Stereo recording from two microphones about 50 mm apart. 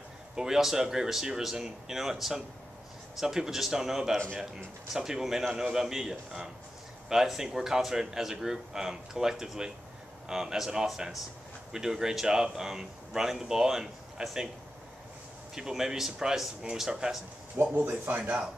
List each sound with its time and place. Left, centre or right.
0.4 s a man's voice: centre
15.5 s a man's voice: centre
17.7 s speech: right